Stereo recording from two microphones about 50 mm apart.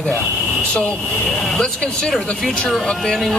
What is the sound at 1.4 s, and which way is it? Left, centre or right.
Speech, centre.